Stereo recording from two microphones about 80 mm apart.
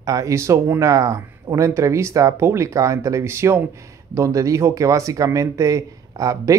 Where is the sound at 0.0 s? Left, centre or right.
Right.